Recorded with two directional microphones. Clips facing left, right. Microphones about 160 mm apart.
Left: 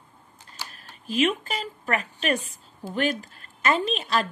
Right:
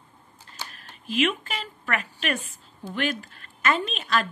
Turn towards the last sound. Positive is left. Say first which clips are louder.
# left 2 dB
turn(degrees=35)  # may be behind; listen again after turning